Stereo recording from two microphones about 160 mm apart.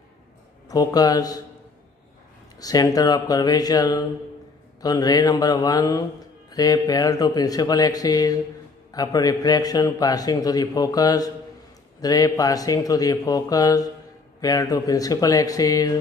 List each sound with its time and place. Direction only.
0.7 s a man's voice: 25° left (ahead or behind)
2.6 s a man's voice: 25° left (ahead or behind)